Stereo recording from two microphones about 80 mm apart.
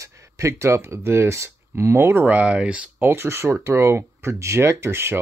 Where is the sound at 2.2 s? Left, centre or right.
Centre.